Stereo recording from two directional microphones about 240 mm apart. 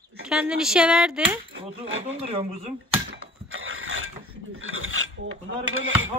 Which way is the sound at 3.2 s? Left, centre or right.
Right.